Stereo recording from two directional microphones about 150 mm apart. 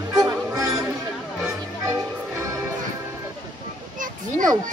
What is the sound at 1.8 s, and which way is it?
Music, 20° right (ahead or behind).